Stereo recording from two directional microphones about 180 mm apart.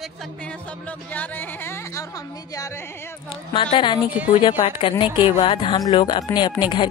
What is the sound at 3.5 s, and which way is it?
Speech, 30° left (ahead or behind).